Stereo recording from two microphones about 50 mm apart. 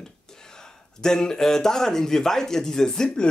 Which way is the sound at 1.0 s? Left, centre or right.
Centre.